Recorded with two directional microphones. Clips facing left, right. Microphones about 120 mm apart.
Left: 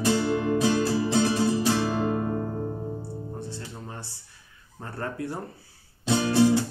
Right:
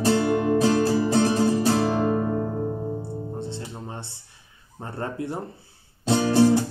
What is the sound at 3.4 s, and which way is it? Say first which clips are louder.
Music: right 4 dB; 25° right (ahead or behind).